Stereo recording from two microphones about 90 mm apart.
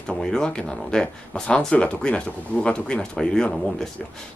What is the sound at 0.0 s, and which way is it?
Speech, 10° left (ahead or behind).